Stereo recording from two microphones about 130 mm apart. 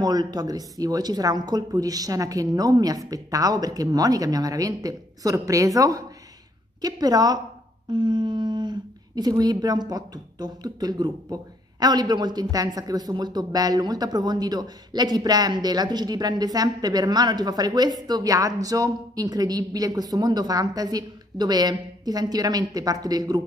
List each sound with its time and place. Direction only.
0.0 s a man's voice: 30° right (ahead or behind)